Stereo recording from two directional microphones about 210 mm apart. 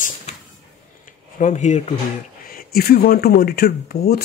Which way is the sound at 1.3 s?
35° left (ahead or behind).